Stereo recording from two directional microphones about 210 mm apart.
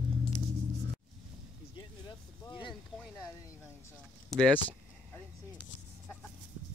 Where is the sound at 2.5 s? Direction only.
25° left (ahead or behind).